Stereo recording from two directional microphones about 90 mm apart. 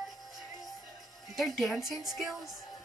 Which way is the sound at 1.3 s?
Centre (ahead or behind).